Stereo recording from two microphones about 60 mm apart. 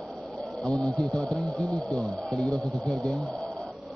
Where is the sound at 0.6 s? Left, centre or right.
Centre.